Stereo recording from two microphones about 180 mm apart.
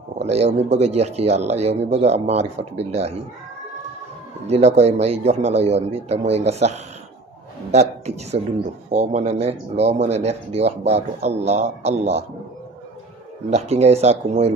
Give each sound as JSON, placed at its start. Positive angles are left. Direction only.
{"t": 0.2, "sound": "speech", "side_deg": -35}
{"t": 4.5, "sound": "speech", "side_deg": -35}
{"t": 8.9, "sound": "speech", "side_deg": -40}
{"t": 13.5, "sound": "speech", "side_deg": -40}